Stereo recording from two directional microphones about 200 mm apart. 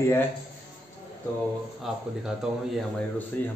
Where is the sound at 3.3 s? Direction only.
10° left (ahead or behind).